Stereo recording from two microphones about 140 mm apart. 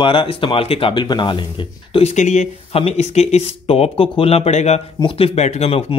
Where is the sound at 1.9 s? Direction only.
50° left (ahead or behind).